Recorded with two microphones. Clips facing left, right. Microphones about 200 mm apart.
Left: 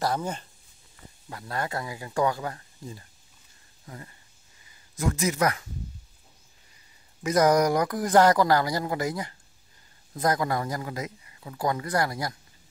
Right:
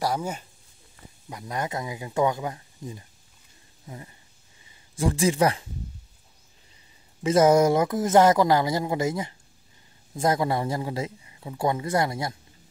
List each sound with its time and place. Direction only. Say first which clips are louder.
0.0 s a man's voice: right 1 dB; 10° right (ahead or behind)
4.9 s a man's voice: right 4 dB; 30° right (ahead or behind)
7.2 s a man's voice: right 3 dB; 25° right (ahead or behind)